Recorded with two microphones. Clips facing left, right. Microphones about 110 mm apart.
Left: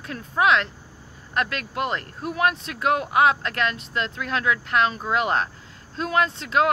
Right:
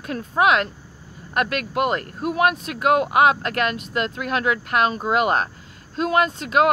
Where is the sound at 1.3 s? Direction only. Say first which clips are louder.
Right 4 dB; 15° right (ahead or behind).